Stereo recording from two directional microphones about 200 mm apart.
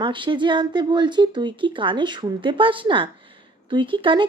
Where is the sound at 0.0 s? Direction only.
25° right (ahead or behind).